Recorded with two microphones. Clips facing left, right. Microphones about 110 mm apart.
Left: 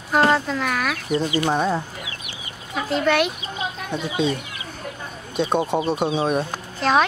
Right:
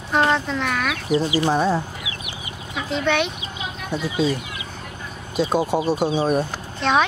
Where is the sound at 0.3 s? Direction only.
5° left (ahead or behind).